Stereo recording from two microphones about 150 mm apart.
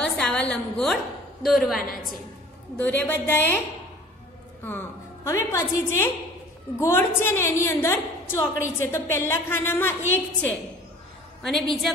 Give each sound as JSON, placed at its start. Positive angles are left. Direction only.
{"t": 0.0, "sound": "a sound", "side_deg": 5}
{"t": 1.4, "sound": "a woman's voice", "side_deg": 0}
{"t": 2.8, "sound": "a woman's voice", "side_deg": 10}
{"t": 4.6, "sound": "a woman's voice", "side_deg": 15}
{"t": 11.4, "sound": "a woman's voice", "side_deg": 0}